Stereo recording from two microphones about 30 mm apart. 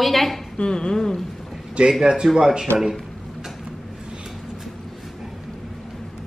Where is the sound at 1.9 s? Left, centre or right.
Right.